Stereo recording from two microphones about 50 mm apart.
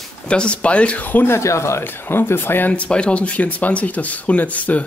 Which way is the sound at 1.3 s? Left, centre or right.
Left.